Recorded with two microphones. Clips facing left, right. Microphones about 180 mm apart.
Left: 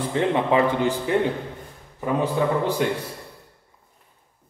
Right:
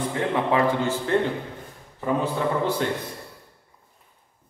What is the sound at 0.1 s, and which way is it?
Speech, 25° left (ahead or behind).